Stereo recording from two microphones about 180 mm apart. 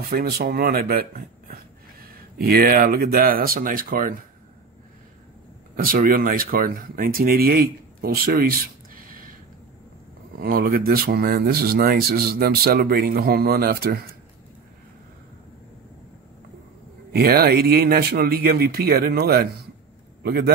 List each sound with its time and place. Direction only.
0.1 s speech: 55° right (ahead or behind)
5.8 s speech: 55° right (ahead or behind)
10.4 s speech: 55° right (ahead or behind)
17.1 s speech: 60° right (ahead or behind)